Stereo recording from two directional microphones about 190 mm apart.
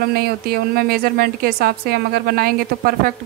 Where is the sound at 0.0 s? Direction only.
55° right (ahead or behind).